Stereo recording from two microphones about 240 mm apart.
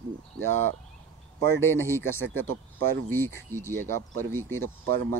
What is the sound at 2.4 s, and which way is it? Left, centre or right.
Speech, right.